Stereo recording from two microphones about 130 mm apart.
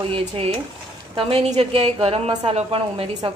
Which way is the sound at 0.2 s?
55° right (ahead or behind).